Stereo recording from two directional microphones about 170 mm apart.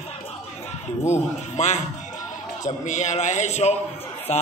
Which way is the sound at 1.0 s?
40° left (ahead or behind).